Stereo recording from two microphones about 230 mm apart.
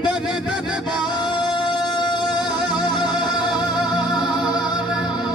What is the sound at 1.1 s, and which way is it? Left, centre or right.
Music, centre.